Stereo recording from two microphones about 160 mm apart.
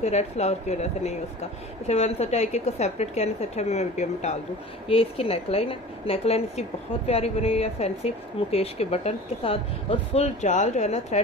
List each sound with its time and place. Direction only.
0.0 s a woman's voice: 45° left (ahead or behind)